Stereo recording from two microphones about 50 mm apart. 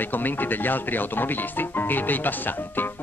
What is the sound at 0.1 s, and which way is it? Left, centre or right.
Speech, left.